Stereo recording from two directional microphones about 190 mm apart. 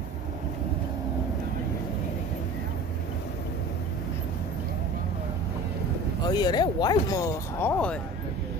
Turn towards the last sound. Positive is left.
turn(degrees=10)  # may be behind; listen again after turning